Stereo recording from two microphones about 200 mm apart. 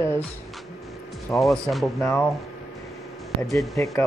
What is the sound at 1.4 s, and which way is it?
Speech, centre (ahead or behind).